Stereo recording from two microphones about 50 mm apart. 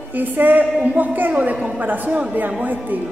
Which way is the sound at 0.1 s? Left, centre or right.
Right.